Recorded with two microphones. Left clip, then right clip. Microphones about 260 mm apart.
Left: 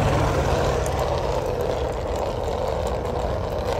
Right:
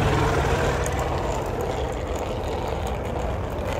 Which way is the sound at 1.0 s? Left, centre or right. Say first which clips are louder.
Left 3 dB; left.